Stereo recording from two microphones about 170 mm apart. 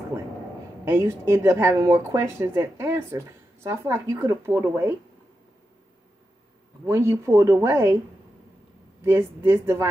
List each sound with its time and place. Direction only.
0.8 s speech: 15° right (ahead or behind)
6.9 s speech: 15° right (ahead or behind)
9.0 s speech: 15° right (ahead or behind)